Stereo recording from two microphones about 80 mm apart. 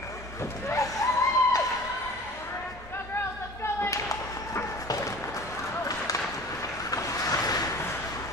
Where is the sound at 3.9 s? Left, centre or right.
Left.